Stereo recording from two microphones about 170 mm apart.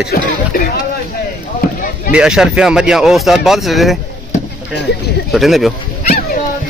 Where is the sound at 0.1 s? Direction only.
60° left (ahead or behind).